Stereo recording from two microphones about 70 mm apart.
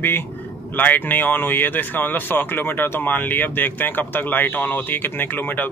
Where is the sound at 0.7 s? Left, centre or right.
Left.